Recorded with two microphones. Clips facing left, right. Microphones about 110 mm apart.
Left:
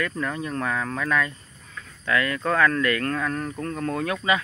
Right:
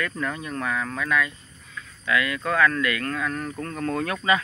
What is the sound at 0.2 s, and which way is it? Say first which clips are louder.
Speech: left 1 dB; 30° left (ahead or behind).